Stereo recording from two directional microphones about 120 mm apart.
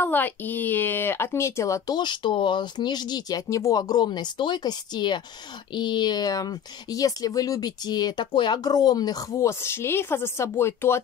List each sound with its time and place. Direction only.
0.0 s speech: 15° left (ahead or behind)
2.0 s speech: 40° left (ahead or behind); by 11.0 s 20° left (ahead or behind)